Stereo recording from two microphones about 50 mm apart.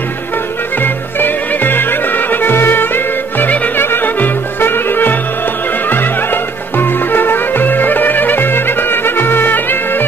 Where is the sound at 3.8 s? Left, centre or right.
Left.